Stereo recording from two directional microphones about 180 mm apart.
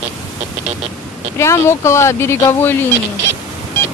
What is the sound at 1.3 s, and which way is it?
Speech, 15° left (ahead or behind).